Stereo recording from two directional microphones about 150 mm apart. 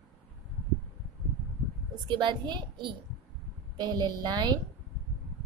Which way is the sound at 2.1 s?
30° right (ahead or behind).